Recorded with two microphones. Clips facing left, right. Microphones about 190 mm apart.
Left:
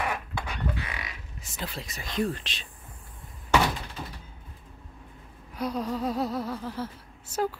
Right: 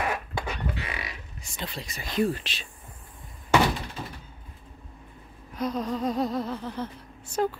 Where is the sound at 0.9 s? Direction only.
25° right (ahead or behind).